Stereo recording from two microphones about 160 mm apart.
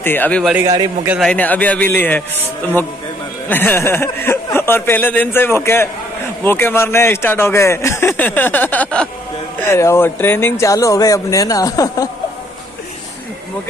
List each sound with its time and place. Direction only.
0.0 s speech: 10° left (ahead or behind)
3.4 s speech: 15° left (ahead or behind)